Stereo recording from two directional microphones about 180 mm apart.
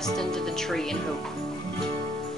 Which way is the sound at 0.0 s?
5° left (ahead or behind).